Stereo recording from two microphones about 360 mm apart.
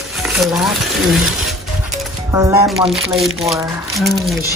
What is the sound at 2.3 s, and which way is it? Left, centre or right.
Speech, centre.